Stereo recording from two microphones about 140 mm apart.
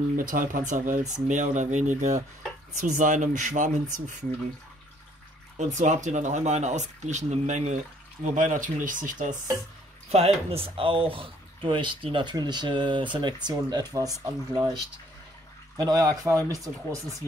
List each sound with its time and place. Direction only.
0.2 s speech: 75° right (ahead or behind)
5.6 s speech: 60° right (ahead or behind)
10.1 s speech: 45° right (ahead or behind); by 14.6 s 25° right (ahead or behind)
15.8 s speech: 25° right (ahead or behind)